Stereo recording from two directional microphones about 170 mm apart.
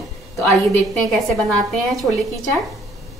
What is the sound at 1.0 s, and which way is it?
A woman's voice, centre (ahead or behind).